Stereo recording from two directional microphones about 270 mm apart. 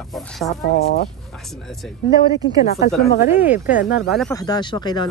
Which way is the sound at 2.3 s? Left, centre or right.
Left.